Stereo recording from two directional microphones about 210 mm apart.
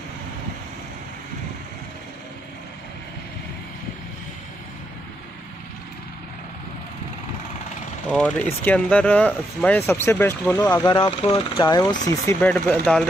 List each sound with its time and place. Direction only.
8.1 s speech: 5° left (ahead or behind)
10.9 s speech: 20° left (ahead or behind); by 13.0 s 5° left (ahead or behind)